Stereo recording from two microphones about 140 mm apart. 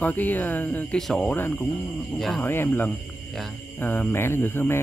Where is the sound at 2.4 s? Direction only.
15° left (ahead or behind).